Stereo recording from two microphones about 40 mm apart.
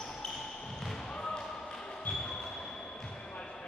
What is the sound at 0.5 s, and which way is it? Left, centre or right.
Basketball bounce, centre.